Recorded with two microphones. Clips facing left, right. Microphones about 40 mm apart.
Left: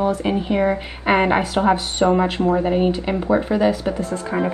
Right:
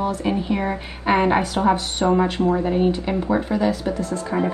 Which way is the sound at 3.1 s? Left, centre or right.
Centre.